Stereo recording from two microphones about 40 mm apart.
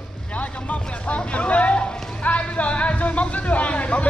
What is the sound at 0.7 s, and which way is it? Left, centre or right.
Speech, left.